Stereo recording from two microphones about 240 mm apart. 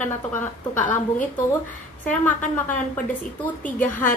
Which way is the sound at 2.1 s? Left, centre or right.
Centre.